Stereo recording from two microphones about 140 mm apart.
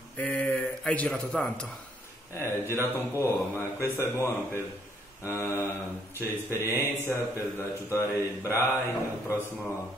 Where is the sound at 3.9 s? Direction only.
20° left (ahead or behind).